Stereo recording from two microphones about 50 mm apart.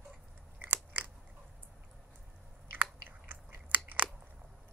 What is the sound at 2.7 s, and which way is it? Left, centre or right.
Biting, right.